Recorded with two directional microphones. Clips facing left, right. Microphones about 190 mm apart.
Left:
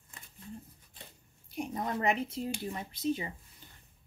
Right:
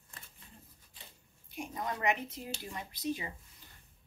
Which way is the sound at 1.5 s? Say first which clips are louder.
Left 4 dB; 35° left (ahead or behind).